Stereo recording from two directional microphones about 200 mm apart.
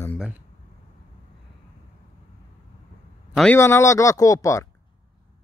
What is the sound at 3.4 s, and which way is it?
Speech, 10° left (ahead or behind).